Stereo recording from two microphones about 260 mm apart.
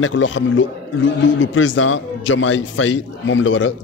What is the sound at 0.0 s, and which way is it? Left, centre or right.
A man's voice, left.